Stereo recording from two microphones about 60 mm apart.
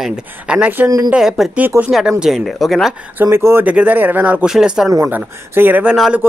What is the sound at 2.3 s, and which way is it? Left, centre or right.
Speech, centre.